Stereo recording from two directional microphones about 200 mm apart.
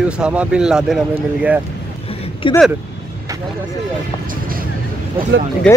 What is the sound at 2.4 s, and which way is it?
Speech, 25° left (ahead or behind).